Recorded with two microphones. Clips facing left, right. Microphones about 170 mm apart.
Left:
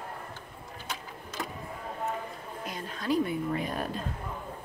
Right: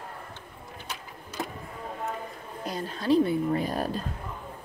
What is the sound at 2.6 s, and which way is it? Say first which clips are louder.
A woman's voice: right 5 dB; 35° right (ahead or behind).